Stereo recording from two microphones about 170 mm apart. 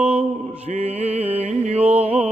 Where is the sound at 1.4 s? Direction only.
40° right (ahead or behind).